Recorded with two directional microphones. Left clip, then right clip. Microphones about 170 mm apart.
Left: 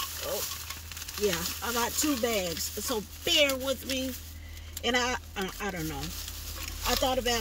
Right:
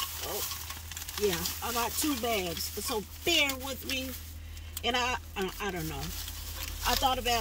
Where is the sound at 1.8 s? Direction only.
20° right (ahead or behind).